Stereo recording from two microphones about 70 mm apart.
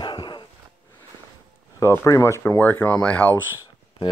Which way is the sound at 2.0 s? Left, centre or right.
Left.